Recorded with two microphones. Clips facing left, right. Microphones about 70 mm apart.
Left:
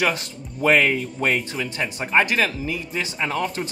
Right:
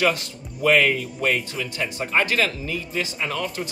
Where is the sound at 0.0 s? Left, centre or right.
Left.